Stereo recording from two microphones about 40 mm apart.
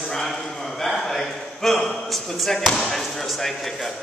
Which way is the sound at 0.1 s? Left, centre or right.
Centre.